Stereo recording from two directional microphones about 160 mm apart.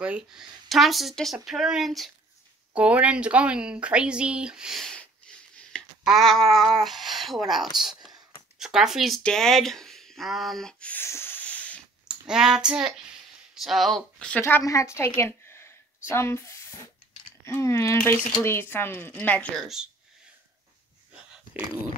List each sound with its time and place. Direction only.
0.0 s speech: 5° right (ahead or behind)
12.1 s speech: 5° right (ahead or behind)
14.4 s a woman's voice: 20° left (ahead or behind)
21.1 s a sound: 5° right (ahead or behind)